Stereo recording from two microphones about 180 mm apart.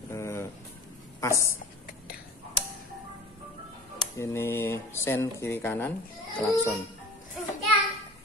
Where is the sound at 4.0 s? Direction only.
15° left (ahead or behind).